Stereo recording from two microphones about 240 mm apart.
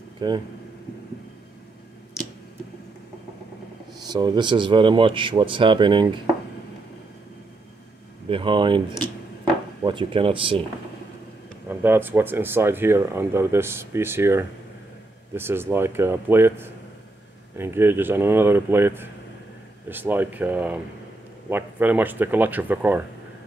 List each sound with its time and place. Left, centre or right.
0.2 s speech: centre
4.0 s speech: centre
8.3 s speech: right
8.9 s a sound: centre
9.8 s speech: right
11.8 s speech: centre